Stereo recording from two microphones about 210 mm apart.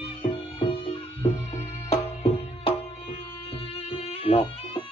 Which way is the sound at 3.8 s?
25° left (ahead or behind).